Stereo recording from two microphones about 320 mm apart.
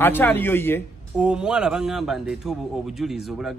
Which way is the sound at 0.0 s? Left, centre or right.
Centre.